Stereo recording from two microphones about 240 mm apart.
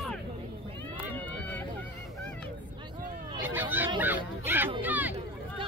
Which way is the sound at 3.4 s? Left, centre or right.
Centre.